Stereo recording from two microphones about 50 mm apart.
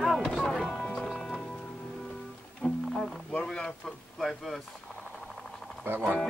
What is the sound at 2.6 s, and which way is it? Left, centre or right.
Music, left.